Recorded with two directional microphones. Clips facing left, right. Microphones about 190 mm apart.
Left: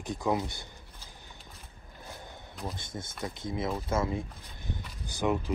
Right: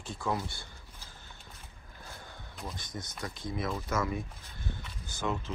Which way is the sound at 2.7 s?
25° left (ahead or behind).